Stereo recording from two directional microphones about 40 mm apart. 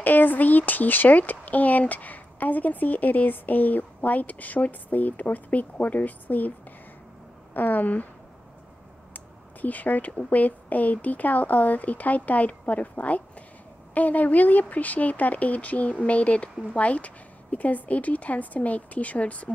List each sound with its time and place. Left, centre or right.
0.0 s speech: left
7.5 s speech: left
9.1 s speech: left